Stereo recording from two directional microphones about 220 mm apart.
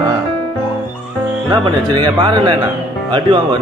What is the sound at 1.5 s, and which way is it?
Music, 20° right (ahead or behind).